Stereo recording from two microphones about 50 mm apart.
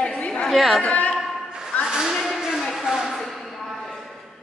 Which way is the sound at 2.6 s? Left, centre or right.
Centre.